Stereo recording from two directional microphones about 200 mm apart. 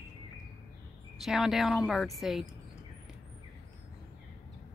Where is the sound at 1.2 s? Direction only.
Centre (ahead or behind).